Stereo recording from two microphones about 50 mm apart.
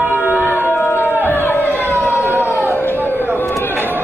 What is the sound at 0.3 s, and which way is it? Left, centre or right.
Music, right.